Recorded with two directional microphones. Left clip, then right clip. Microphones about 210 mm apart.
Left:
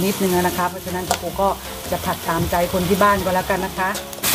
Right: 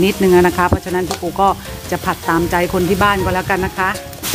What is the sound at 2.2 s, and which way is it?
Speech, 50° right (ahead or behind).